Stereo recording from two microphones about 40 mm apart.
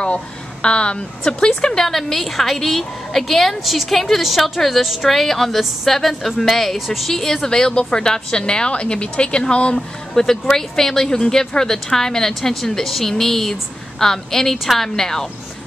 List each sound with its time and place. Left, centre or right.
0.0 s a woman's voice: left
9.8 s speech: centre